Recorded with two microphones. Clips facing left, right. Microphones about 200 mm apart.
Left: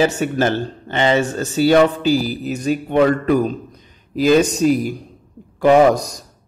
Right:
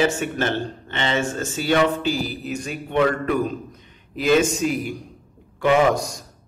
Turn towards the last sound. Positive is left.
turn(degrees=35)  # may be behind; listen again after turning